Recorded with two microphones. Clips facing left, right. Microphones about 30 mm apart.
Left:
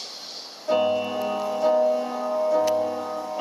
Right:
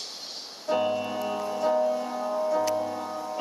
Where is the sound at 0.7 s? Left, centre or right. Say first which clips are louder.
Left 4 dB; centre.